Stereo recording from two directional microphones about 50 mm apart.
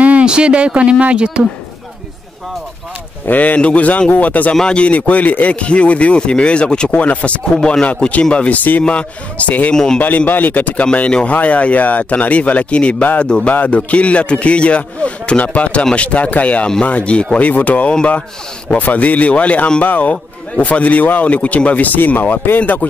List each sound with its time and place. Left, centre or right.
0.0 s speech: right
3.3 s a man's voice: left
4.6 s speech: centre
7.5 s speech: centre
7.8 s speech: left
9.7 s speech: centre
9.9 s a man's voice: left
10.9 s a man's voice: centre; by 22.6 s left
22.6 s speech: left